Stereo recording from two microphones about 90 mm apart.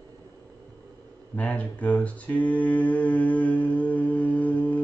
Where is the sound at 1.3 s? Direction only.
15° left (ahead or behind).